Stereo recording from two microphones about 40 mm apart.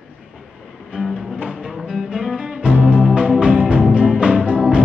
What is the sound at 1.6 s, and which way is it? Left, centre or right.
Music, centre.